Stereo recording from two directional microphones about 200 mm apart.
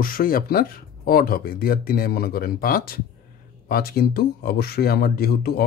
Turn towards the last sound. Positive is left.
turn(degrees=50)  # may be behind; listen again after turning